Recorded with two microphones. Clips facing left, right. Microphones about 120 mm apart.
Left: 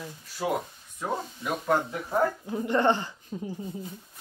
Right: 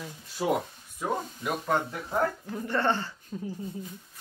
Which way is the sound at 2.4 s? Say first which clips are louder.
Left 4 dB; 15° left (ahead or behind).